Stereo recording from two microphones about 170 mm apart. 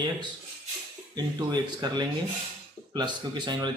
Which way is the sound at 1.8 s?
25° right (ahead or behind).